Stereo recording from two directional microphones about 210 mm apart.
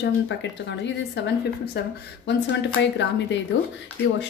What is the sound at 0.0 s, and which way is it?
A woman's voice, 55° left (ahead or behind).